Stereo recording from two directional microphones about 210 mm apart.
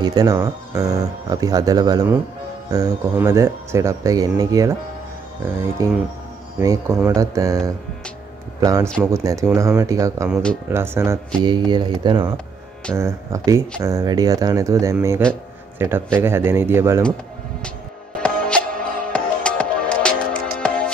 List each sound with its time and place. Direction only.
0.0 s speech: 20° right (ahead or behind)
5.8 s speech: 15° right (ahead or behind)
18.2 s music: 5° left (ahead or behind)